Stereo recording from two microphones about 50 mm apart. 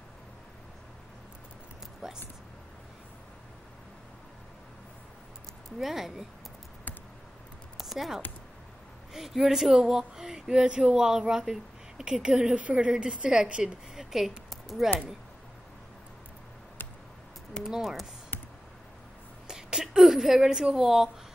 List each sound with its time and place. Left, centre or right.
5.8 s speech: centre
7.8 s a woman's voice: centre; by 13.7 s right
13.9 s speech: centre
14.5 s a sound: centre
17.6 s speech: centre
19.4 s a sound: centre